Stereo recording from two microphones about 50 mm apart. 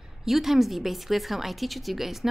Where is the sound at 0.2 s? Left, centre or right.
Centre.